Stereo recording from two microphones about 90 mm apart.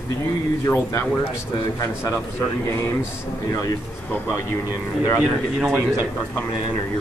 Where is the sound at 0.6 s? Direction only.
30° left (ahead or behind).